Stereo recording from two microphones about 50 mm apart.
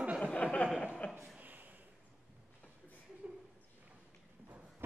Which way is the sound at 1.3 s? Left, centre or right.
Right.